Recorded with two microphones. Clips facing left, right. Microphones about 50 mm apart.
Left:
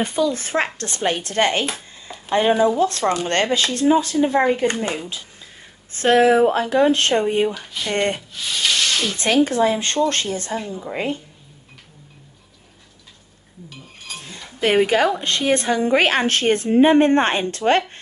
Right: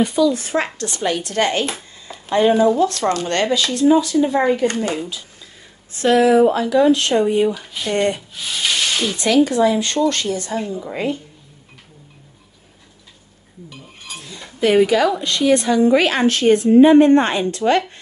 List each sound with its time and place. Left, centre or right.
0.0 s a woman's voice: left
2.3 s speech: centre
2.8 s a woman's voice: left
4.6 s speech: left
5.9 s a woman's voice: left
7.5 s speech: centre
7.9 s a woman's voice: left
8.4 s rub: centre
9.2 s a woman's voice: left
10.7 s speech: centre
14.6 s a woman's voice: left